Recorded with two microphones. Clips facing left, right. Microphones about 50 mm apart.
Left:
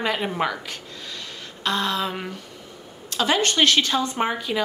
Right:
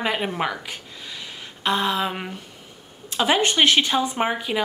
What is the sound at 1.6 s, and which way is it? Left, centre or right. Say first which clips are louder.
A woman's voice: right 2 dB; centre.